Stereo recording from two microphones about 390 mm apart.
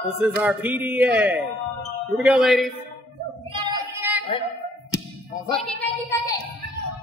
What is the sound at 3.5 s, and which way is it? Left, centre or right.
Child singing, centre.